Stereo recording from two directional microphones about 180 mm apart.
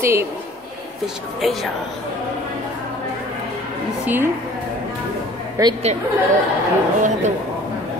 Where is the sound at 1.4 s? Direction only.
Centre (ahead or behind).